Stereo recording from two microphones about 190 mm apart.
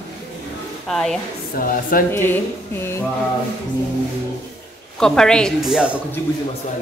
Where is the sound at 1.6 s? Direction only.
50° left (ahead or behind).